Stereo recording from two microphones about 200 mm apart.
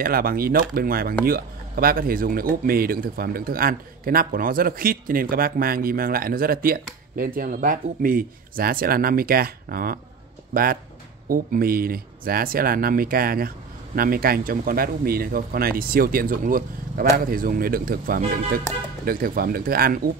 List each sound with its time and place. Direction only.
0.0 s speech: 45° right (ahead or behind)